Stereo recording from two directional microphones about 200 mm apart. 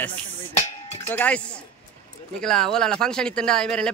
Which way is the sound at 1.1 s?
5° left (ahead or behind).